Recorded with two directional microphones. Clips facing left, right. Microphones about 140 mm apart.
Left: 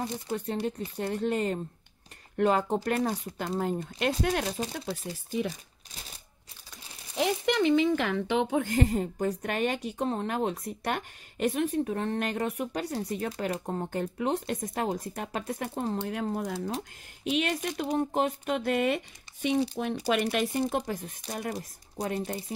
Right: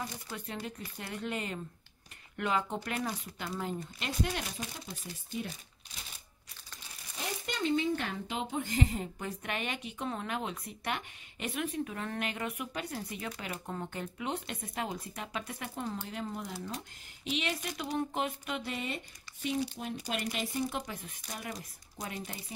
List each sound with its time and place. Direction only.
0.5 s speech: 35° left (ahead or behind); by 4.5 s 55° left (ahead or behind)
4.5 s speech: 35° left (ahead or behind)
7.2 s speech: 80° left; by 16.0 s 45° left (ahead or behind)
16.0 s speech: 60° left (ahead or behind)
20.7 s speech: 45° left (ahead or behind)